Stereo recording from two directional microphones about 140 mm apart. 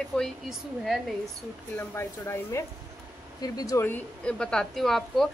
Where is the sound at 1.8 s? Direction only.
20° left (ahead or behind).